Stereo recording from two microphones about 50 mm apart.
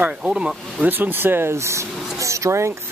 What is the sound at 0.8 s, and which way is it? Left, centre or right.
Speech, right.